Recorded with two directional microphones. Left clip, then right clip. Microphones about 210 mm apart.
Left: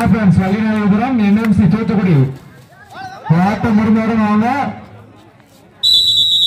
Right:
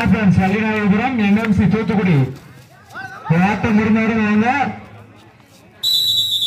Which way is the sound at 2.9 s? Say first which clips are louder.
Left 1 dB; 35° left (ahead or behind).